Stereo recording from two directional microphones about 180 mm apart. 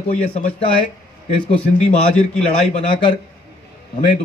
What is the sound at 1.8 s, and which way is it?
A man's voice, 40° left (ahead or behind).